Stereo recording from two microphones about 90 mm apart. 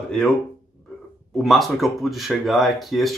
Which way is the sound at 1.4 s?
Centre (ahead or behind).